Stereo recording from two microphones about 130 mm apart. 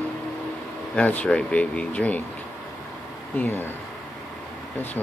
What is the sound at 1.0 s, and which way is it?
Speech, 10° left (ahead or behind).